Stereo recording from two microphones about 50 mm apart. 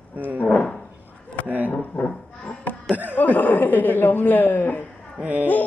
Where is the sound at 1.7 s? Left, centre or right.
Left.